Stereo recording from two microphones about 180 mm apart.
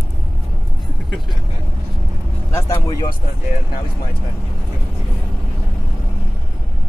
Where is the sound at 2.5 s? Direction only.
20° left (ahead or behind).